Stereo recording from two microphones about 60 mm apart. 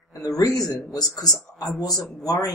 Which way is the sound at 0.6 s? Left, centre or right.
Left.